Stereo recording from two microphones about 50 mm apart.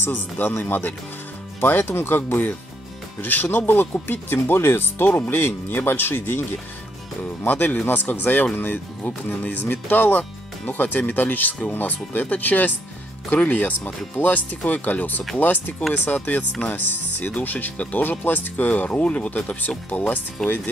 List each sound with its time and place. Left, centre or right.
0.1 s speech: left
7.4 s speech: left